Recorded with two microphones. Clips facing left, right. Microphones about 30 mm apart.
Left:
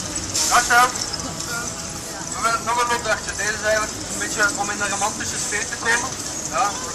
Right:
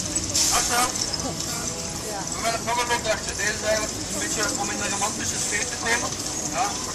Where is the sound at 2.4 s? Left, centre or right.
Centre.